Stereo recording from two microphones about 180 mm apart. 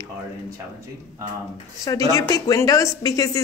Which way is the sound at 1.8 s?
20° left (ahead or behind).